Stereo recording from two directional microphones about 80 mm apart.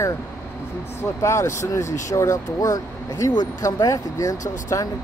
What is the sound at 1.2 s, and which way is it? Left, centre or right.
Speech, left.